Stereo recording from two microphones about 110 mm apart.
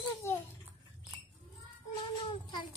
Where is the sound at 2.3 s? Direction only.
50° left (ahead or behind).